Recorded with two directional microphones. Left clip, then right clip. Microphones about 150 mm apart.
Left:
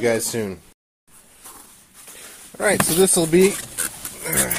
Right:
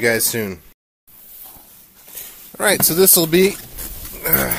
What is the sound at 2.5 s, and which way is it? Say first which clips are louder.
Speech: right 2 dB; 25° right (ahead or behind).